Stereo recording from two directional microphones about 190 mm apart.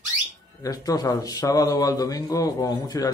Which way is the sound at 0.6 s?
20° left (ahead or behind).